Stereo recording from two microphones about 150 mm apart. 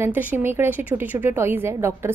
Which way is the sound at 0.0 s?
10° right (ahead or behind).